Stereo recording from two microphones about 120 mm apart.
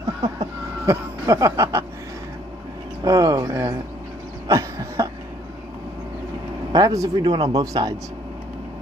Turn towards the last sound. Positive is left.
turn(degrees=-30)  # may be behind; listen again after turning